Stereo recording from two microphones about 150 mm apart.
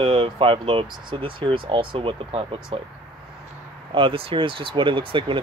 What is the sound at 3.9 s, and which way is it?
Speech, 35° right (ahead or behind).